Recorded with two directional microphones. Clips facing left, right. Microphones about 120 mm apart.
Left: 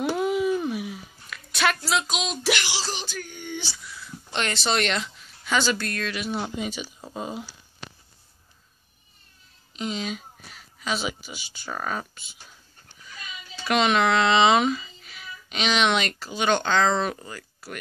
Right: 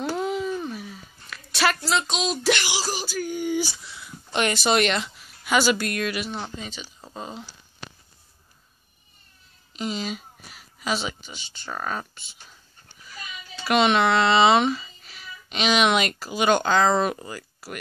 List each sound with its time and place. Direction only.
0.1 s a sound: 5° left (ahead or behind)
2.6 s speech: 10° right (ahead or behind)
3.8 s a sound: 20° right (ahead or behind)
4.3 s speech: 10° right (ahead or behind)
6.2 s speech: 5° left (ahead or behind)
9.8 s speech: centre (ahead or behind)
13.7 s speech: centre (ahead or behind)